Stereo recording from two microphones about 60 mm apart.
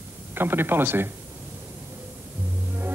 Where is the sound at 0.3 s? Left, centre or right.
Right.